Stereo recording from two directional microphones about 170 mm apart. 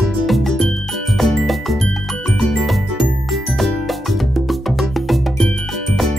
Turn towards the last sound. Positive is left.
turn(degrees=0)  # may be behind; listen again after turning